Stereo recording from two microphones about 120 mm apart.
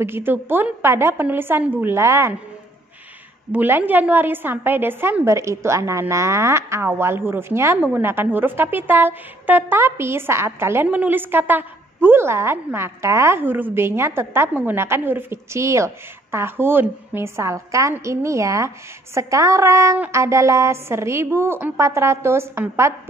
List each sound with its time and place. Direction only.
0.0 s a woman's voice: 20° right (ahead or behind)
3.5 s a woman's voice: 15° right (ahead or behind)